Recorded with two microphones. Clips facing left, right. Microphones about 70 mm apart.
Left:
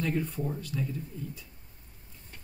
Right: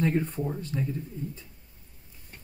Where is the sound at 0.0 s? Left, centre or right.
Right.